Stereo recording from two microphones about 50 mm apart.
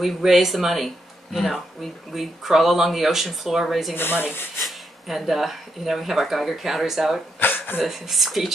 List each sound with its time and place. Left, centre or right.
0.0 s speech: centre
3.9 s speech: left
4.6 s speech: centre
7.3 s a sound: left
7.8 s speech: centre